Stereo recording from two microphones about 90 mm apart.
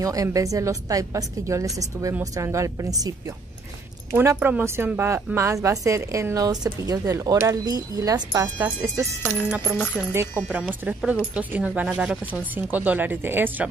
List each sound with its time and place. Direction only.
0.0 s a woman's voice: 40° right (ahead or behind)
4.4 s a woman's voice: 20° right (ahead or behind); by 8.5 s 40° right (ahead or behind)
8.5 s a woman's voice: 30° right (ahead or behind)
9.2 s speech: 20° left (ahead or behind)
10.4 s speech: 20° right (ahead or behind)